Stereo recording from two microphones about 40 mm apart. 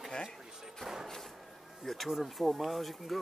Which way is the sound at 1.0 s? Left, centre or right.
Centre.